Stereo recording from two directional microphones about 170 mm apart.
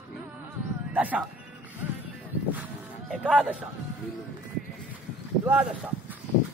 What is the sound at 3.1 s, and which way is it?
Speech, 5° right (ahead or behind).